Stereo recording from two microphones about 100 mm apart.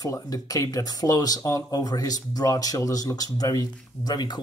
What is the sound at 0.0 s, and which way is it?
Speech, 35° left (ahead or behind).